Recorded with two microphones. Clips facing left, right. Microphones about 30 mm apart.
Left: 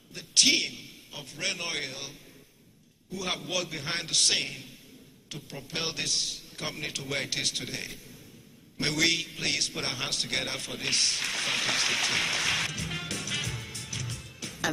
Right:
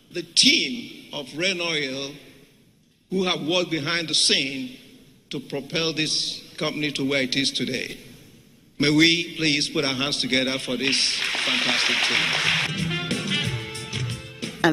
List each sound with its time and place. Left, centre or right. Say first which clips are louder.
0.1 s a man's voice: right 5 dB; right